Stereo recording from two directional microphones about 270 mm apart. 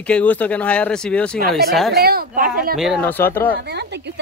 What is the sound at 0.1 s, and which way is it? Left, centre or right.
Speech, centre.